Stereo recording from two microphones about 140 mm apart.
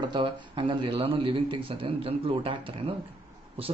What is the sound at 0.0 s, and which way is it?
Speech, 35° right (ahead or behind).